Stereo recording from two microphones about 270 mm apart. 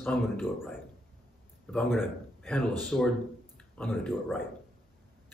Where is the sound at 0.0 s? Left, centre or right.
Centre.